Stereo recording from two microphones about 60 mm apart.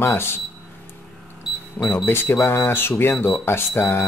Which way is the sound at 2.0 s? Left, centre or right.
Left.